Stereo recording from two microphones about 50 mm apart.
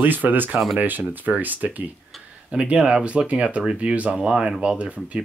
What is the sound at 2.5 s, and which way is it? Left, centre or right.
Speech, right.